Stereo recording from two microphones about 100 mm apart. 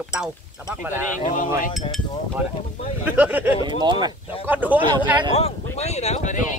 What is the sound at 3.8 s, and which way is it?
Speech, 50° right (ahead or behind).